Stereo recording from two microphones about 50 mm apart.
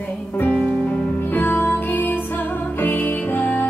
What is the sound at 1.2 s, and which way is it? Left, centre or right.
Music, left.